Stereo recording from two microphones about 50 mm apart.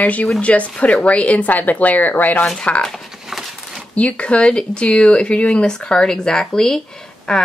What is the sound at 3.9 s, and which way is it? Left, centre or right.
Speech, left.